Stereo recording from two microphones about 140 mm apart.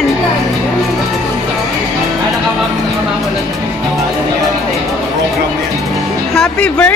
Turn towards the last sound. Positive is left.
turn(degrees=5)  # may be behind; listen again after turning